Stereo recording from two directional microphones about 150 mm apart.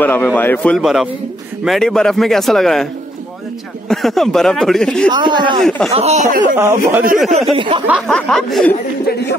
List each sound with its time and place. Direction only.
0.0 s a man's voice: 10° left (ahead or behind)
0.7 s speech: centre (ahead or behind)
3.9 s speech: centre (ahead or behind)
5.1 s speech: 30° right (ahead or behind)
5.6 s speech: 5° left (ahead or behind)
5.9 s speech: 45° right (ahead or behind)
6.5 s a man's voice: 15° right (ahead or behind)
7.3 s speech: 35° right (ahead or behind)
8.1 s speech: 5° left (ahead or behind)